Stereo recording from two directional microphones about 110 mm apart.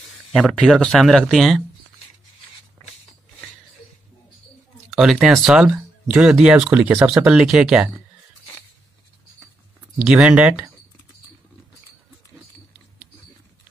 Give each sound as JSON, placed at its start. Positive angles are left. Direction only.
{"t": 0.3, "sound": "speech", "side_deg": 0}
{"t": 4.9, "sound": "speech", "side_deg": 0}
{"t": 6.9, "sound": "speech", "side_deg": -15}
{"t": 7.3, "sound": "speech", "side_deg": -5}
{"t": 9.9, "sound": "speech", "side_deg": -5}